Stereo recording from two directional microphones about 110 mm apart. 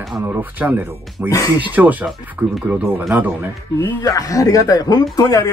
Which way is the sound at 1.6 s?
15° right (ahead or behind).